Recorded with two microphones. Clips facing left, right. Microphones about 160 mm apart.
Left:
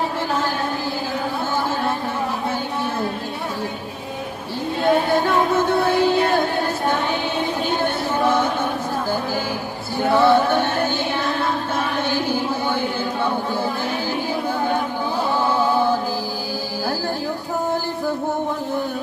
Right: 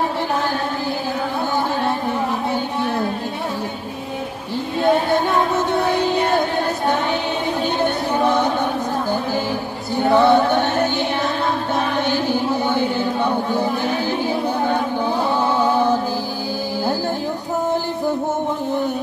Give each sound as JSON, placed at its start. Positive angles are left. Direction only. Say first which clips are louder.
{"t": 5.7, "sound": "music", "louder": "left 1 dB", "side_deg": -20}
{"t": 8.2, "sound": "a sound", "louder": "right 1 dB", "side_deg": -20}
{"t": 9.9, "sound": "music", "louder": "right 2 dB", "side_deg": -20}
{"t": 12.1, "sound": "music", "louder": "right 2 dB", "side_deg": -20}
{"t": 15.6, "sound": "mantra", "louder": "right 2 dB", "side_deg": -20}